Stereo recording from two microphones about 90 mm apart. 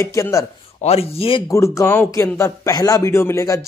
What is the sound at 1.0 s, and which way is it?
Speech, 90° left.